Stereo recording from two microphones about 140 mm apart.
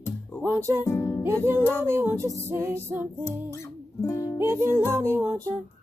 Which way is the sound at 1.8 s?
15° right (ahead or behind).